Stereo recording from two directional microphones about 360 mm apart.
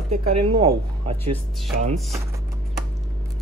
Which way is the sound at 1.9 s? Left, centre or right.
Centre.